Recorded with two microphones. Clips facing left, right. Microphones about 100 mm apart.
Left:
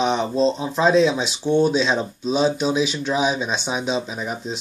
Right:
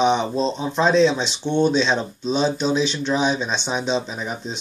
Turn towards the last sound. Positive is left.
turn(degrees=5)  # may be behind; listen again after turning